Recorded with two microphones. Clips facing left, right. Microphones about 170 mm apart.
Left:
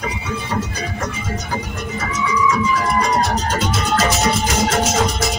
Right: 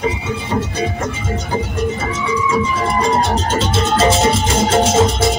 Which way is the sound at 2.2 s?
30° right (ahead or behind).